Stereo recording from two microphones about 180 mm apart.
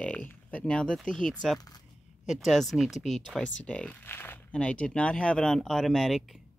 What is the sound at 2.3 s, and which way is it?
Speech, centre (ahead or behind).